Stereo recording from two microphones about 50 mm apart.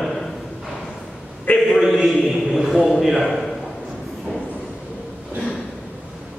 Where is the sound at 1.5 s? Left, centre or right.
Left.